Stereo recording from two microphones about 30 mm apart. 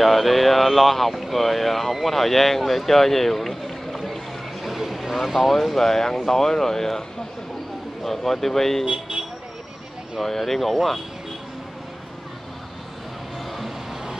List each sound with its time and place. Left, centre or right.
0.0 s speech: centre
4.6 s vehicle: centre
5.1 s speech: centre
8.0 s speech: centre
8.8 s speech: right
10.2 s speech: centre